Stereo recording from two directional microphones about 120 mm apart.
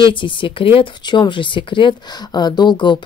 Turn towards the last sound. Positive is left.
turn(degrees=40)  # may be behind; listen again after turning